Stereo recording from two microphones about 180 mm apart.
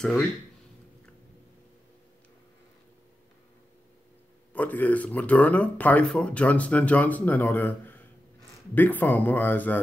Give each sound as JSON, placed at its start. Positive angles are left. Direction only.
{"t": 4.6, "sound": "speech", "side_deg": 10}